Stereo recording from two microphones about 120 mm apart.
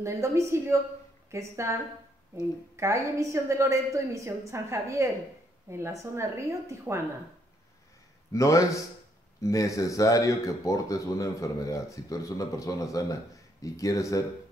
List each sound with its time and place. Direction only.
0.0 s a woman's voice: 25° right (ahead or behind)
8.3 s speech: 25° left (ahead or behind)